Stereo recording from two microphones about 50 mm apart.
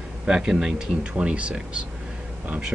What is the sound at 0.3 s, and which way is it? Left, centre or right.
Speech, centre.